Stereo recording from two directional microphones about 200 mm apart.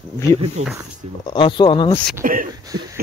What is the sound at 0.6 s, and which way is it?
Speech, 35° right (ahead or behind).